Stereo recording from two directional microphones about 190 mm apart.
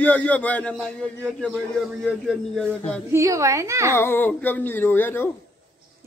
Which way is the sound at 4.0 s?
10° left (ahead or behind).